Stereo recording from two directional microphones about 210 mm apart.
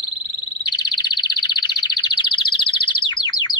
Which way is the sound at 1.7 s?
20° left (ahead or behind).